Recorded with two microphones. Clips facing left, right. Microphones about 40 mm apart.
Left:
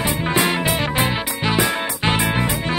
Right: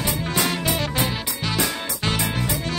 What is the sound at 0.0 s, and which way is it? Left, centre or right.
Music, left.